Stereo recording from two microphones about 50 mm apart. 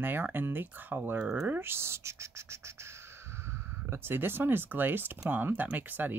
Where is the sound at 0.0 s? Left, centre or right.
Right.